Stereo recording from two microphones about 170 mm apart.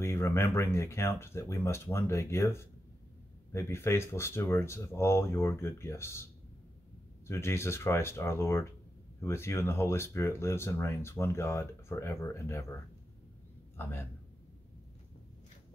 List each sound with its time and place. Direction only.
0.0 s speech: 15° left (ahead or behind)
7.2 s speech: 15° left (ahead or behind)